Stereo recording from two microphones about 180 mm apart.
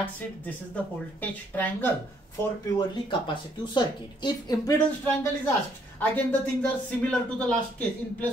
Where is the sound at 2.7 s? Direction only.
25° left (ahead or behind).